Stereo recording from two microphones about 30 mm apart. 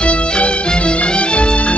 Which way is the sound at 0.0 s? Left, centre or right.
Left.